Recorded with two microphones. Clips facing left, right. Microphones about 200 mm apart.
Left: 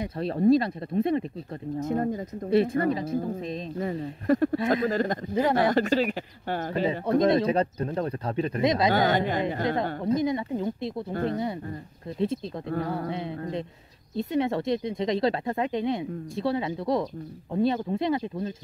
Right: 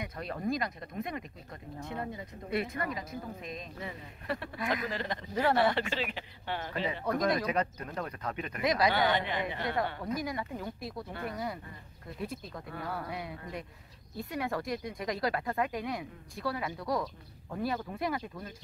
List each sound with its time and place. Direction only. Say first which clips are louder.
0.0 s a woman's voice: left 12 dB; 30° left (ahead or behind)
1.8 s speech: left 11 dB; 40° left (ahead or behind)
2.5 s a woman's voice: left 11 dB; 30° left (ahead or behind); by 5.2 s 45° left (ahead or behind)
5.3 s a woman's voice: left 3 dB; 20° left (ahead or behind)
5.6 s speech: left 7 dB; 40° left (ahead or behind)
6.9 s a woman's voice: left 8 dB; 25° left (ahead or behind)
8.9 s speech: left 6 dB; 45° left (ahead or behind)
10.0 s a woman's voice: left 10 dB; 25° left (ahead or behind)
14.1 s a woman's voice: left 9 dB; 25° left (ahead or behind)